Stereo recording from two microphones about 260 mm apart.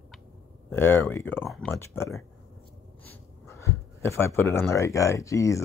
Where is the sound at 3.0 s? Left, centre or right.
Centre.